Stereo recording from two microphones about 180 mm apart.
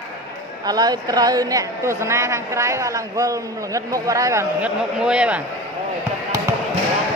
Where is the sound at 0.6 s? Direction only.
20° right (ahead or behind).